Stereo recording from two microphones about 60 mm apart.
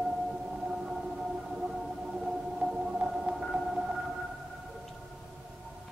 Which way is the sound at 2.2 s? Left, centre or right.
Centre.